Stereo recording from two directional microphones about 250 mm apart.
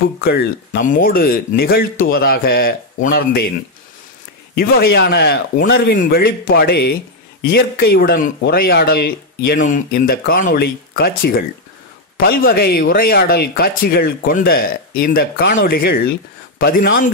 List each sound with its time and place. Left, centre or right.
0.2 s speech: left
4.6 s speech: left